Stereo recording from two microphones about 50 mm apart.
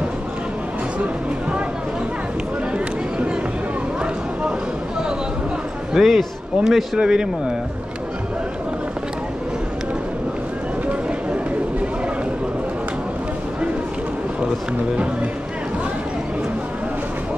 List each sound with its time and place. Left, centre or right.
5.9 s a man's voice: centre
7.0 s speech: centre